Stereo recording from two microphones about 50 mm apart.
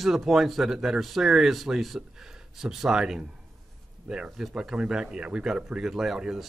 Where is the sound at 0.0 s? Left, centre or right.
Centre.